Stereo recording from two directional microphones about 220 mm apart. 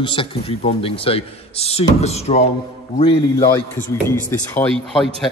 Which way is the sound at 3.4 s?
10° left (ahead or behind).